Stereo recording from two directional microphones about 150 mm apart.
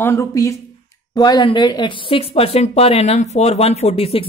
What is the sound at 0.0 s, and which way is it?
Speech, 20° left (ahead or behind).